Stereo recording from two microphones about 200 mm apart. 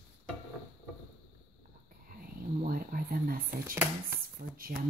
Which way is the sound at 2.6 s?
45° right (ahead or behind).